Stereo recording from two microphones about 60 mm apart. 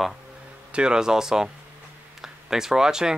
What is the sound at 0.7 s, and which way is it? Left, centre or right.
Speech, centre.